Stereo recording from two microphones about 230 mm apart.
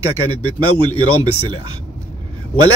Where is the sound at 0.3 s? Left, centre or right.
Left.